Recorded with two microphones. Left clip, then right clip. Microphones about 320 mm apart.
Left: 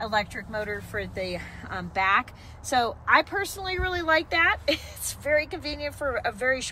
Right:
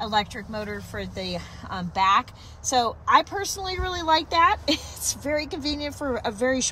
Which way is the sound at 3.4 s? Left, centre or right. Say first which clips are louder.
Even; centre.